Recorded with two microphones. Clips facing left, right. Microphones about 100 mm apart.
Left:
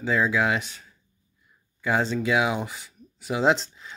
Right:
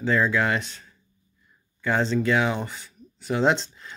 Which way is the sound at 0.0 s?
5° left (ahead or behind).